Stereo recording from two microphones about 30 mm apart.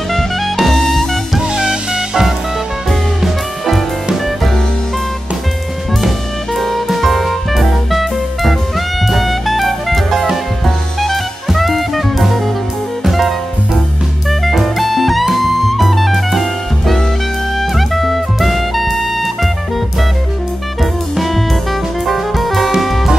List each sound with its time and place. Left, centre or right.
0.6 s music: centre
1.5 s music: right
2.9 s music: centre
6.0 s music: centre
11.4 s jazz: centre
13.0 s music: centre
14.4 s music: centre
20.8 s music: centre